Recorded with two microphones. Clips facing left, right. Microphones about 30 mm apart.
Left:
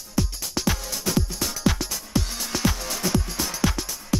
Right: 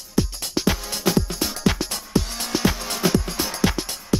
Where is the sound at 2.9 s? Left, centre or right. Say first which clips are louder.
Right 4 dB; right.